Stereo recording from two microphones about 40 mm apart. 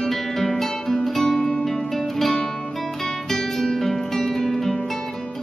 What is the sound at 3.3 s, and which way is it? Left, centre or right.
Guitar, centre.